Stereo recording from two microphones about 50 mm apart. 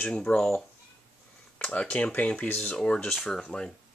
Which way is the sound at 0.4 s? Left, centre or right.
Centre.